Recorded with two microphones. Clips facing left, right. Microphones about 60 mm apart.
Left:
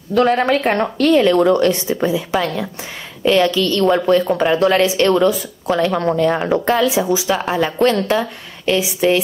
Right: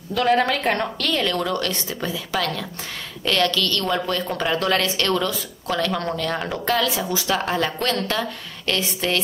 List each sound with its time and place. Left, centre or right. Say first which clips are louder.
0.7 s a woman's voice: left 10 dB; left